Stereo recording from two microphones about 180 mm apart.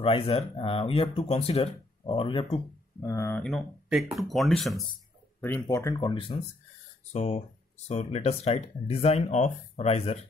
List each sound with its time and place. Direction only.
0.0 s speech: 30° left (ahead or behind); by 3.4 s 15° left (ahead or behind)
3.4 s speech: centre (ahead or behind)
5.4 s speech: 15° left (ahead or behind); by 10.1 s 35° left (ahead or behind)